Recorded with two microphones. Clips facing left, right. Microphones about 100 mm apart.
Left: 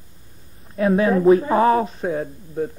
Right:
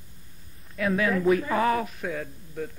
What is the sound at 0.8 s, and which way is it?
Speech, 30° left (ahead or behind).